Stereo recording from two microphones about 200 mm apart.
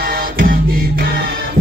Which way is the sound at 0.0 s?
45° right (ahead or behind).